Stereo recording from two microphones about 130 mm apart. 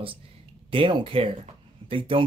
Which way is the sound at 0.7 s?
40° right (ahead or behind).